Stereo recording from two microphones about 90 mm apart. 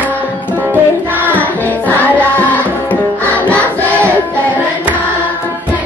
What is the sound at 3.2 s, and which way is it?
Choir, 15° left (ahead or behind).